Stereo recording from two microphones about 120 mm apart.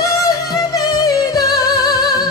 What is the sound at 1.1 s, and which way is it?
Music, 30° left (ahead or behind).